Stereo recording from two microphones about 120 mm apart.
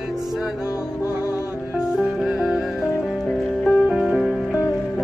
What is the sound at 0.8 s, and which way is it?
Music, 25° left (ahead or behind).